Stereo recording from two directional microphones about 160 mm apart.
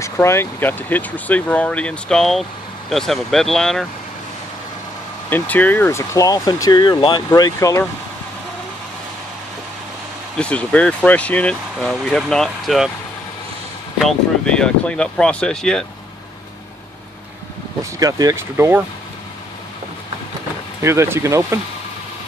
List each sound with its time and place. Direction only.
0.0 s speech: 15° left (ahead or behind)
5.3 s speech: 10° left (ahead or behind)
10.3 s speech: 5° left (ahead or behind)
13.9 s speech: 5° left (ahead or behind)
17.9 s speech: 20° right (ahead or behind)
20.8 s speech: 15° right (ahead or behind)